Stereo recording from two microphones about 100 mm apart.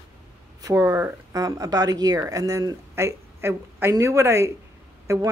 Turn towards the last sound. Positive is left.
turn(degrees=-35)  # may be behind; listen again after turning